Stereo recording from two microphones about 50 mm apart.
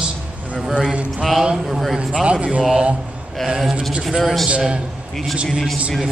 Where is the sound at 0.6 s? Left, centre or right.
Centre.